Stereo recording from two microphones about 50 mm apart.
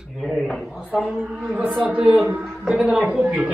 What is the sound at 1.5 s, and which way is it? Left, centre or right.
Speech, right.